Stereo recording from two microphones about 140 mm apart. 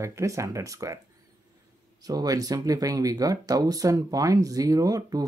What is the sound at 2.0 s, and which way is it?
Speech, 25° right (ahead or behind).